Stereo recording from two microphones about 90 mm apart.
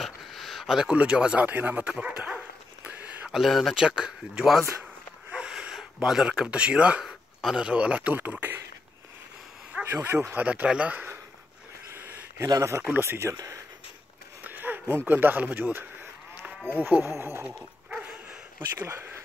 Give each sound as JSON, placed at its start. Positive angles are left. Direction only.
{"t": 0.0, "sound": "speech", "side_deg": 0}
{"t": 1.9, "sound": "dog", "side_deg": -10}
{"t": 3.3, "sound": "speech", "side_deg": -5}
{"t": 5.3, "sound": "wheeze", "side_deg": -10}
{"t": 6.0, "sound": "speech", "side_deg": -5}
{"t": 10.0, "sound": "speech", "side_deg": -25}
{"t": 11.9, "sound": "a sound", "side_deg": -25}
{"t": 12.4, "sound": "speech", "side_deg": -35}
{"t": 14.4, "sound": "a sound", "side_deg": -20}
{"t": 15.0, "sound": "speech", "side_deg": -20}
{"t": 17.8, "sound": "dog", "side_deg": -20}
{"t": 18.8, "sound": "speech", "side_deg": -25}